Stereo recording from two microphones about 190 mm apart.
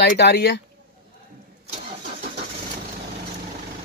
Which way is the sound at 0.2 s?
60° left (ahead or behind).